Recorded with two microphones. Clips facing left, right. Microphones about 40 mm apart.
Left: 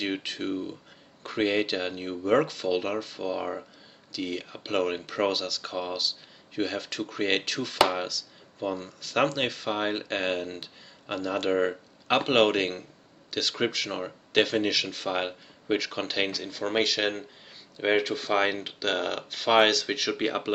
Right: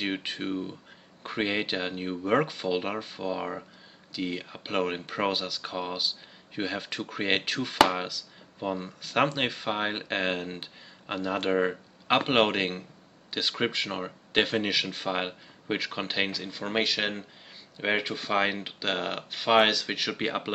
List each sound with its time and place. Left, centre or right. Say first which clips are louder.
0.0 s speech: left 1 dB; centre